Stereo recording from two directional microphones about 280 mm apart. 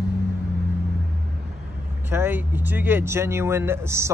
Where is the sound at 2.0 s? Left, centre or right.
Centre.